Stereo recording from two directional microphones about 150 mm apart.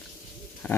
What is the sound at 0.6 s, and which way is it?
Speech, 10° left (ahead or behind).